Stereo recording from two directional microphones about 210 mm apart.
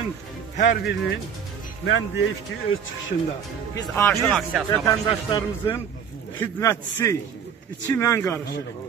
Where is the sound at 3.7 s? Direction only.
15° left (ahead or behind).